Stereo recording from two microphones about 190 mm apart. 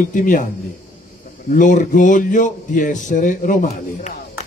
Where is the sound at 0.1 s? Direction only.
45° left (ahead or behind).